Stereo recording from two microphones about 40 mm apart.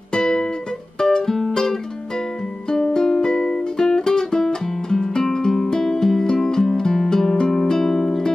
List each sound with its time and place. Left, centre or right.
0.1 s music: centre